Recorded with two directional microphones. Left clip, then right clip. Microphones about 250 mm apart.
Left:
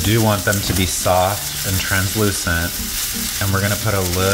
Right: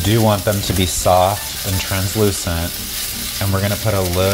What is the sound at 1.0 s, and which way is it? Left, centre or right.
Frying, centre.